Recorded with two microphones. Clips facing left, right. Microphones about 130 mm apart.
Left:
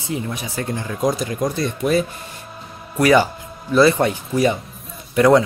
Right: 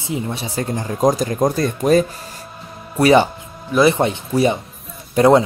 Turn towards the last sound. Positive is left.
turn(degrees=-25)  # may be behind; listen again after turning